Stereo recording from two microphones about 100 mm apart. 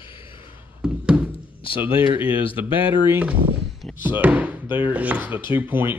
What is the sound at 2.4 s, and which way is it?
Speech, 65° left (ahead or behind).